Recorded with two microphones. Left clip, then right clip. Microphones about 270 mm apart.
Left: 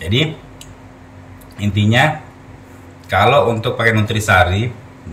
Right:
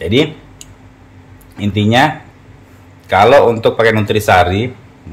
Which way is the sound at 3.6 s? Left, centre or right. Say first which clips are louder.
Right 5 dB; centre.